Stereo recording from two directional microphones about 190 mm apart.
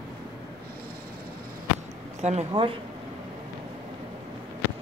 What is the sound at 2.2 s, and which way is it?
Speech, 35° right (ahead or behind).